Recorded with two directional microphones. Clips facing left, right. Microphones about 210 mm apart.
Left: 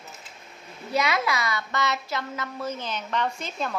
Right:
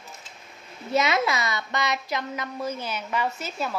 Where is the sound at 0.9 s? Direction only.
25° right (ahead or behind).